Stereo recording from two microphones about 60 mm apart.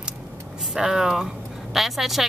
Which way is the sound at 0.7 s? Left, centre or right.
Centre.